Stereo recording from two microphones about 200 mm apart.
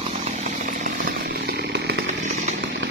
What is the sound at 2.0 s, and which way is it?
Chainsaw, 35° right (ahead or behind).